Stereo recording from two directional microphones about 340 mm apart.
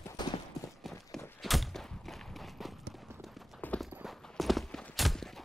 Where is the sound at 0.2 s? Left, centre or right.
Centre.